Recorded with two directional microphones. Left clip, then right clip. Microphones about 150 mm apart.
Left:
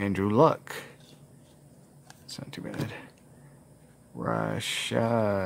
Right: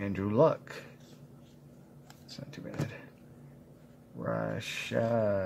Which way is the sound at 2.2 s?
35° left (ahead or behind).